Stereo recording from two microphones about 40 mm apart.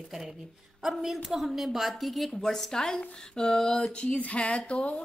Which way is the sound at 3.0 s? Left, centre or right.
Centre.